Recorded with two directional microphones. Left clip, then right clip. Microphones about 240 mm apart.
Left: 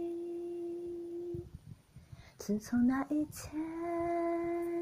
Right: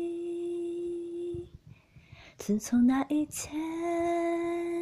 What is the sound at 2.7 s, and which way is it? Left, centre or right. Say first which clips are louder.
Female singing: right 6 dB; right.